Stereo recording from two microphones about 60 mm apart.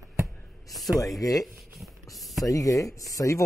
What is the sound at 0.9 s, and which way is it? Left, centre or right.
Speech, left.